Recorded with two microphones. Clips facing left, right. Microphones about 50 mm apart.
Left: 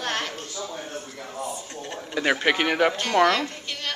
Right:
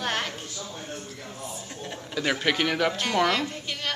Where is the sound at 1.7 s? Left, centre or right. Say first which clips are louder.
Left 2 dB; centre.